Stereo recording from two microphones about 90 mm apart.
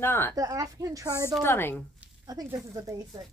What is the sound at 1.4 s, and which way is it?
Speech, 25° left (ahead or behind).